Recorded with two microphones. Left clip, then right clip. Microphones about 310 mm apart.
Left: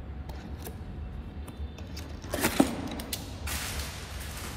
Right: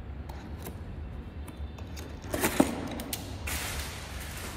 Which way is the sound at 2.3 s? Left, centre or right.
Centre.